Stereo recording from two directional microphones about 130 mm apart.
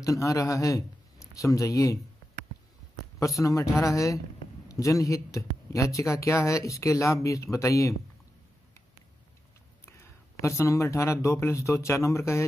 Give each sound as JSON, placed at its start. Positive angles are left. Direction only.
{"t": 0.0, "sound": "a man's voice", "side_deg": 25}
{"t": 3.2, "sound": "speech", "side_deg": 25}
{"t": 9.8, "sound": "speech", "side_deg": 20}